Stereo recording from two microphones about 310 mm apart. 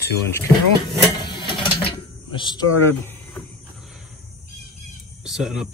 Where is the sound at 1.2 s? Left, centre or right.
Centre.